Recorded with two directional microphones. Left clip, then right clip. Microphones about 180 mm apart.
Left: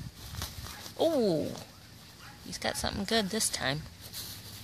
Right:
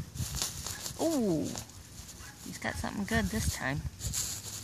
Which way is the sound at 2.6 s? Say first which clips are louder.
Left 3 dB; 25° left (ahead or behind).